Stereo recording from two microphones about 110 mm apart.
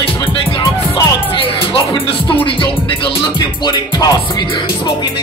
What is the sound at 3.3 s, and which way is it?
Music, 40° left (ahead or behind).